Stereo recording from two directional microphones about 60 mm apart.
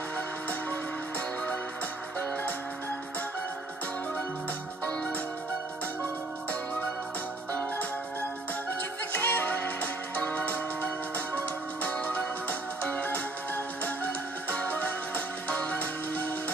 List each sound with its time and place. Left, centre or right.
9.1 s music: left